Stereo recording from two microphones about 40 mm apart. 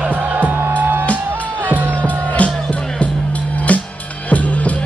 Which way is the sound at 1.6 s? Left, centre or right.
Right.